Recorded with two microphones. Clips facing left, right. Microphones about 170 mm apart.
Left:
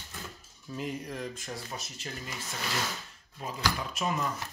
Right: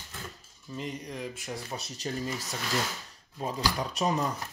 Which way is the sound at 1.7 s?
35° right (ahead or behind).